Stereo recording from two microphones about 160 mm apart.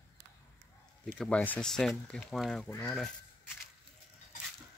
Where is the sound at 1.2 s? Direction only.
10° left (ahead or behind).